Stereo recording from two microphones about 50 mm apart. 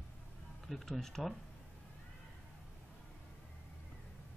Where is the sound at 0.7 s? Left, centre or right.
Centre.